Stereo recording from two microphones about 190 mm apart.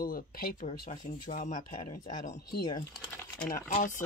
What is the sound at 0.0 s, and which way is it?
Speech, 50° left (ahead or behind).